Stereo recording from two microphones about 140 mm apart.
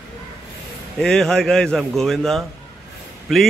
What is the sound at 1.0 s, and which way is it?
A man's voice, 5° left (ahead or behind).